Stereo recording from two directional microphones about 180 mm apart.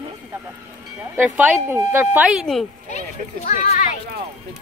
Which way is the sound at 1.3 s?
10° right (ahead or behind).